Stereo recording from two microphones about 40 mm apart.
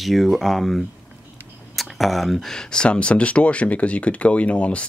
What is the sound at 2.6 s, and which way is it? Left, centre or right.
Speech, centre.